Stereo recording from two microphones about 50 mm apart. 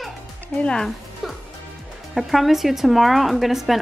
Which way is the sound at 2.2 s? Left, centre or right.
Centre.